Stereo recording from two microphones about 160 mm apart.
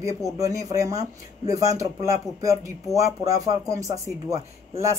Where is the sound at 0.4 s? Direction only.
20° right (ahead or behind).